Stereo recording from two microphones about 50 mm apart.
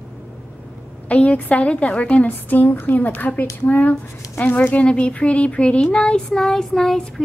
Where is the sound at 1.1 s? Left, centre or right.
Left.